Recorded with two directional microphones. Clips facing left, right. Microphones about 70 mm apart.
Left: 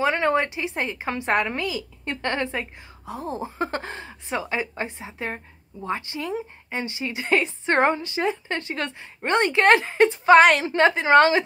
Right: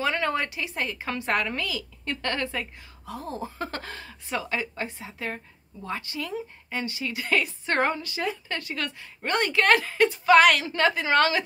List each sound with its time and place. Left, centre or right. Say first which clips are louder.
0.0 s a woman's voice: left 5 dB; left